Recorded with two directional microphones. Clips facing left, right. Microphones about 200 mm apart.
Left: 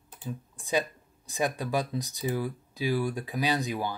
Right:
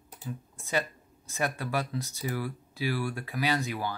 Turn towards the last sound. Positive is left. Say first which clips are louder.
# left 1 dB
turn(degrees=15)  # may be behind; listen again after turning